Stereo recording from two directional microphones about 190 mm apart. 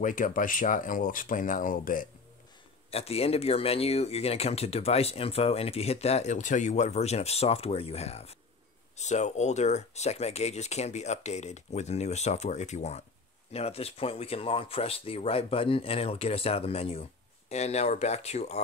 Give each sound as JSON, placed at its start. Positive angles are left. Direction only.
{"t": 0.0, "sound": "speech", "side_deg": 45}
{"t": 2.9, "sound": "speech", "side_deg": 30}